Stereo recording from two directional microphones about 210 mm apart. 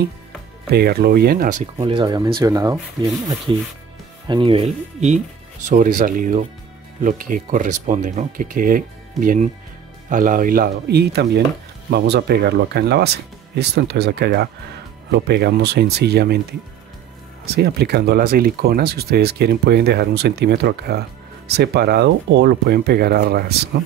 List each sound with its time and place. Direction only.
0.7 s speech: 50° right (ahead or behind)
1.8 s speech: 20° right (ahead or behind)
4.3 s speech: 25° right (ahead or behind); by 23.8 s 50° right (ahead or behind)